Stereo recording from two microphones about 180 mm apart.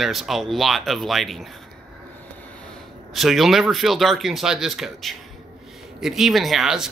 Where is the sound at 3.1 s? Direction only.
Centre (ahead or behind).